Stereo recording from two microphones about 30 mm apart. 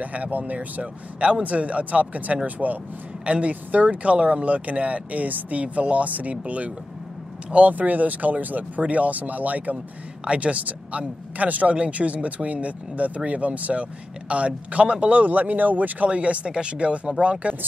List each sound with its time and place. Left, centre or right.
0.0 s speech: right
3.3 s speech: right
4.5 s speech: right
7.7 s speech: right
10.2 s speech: right
11.9 s speech: right
16.1 s speech: right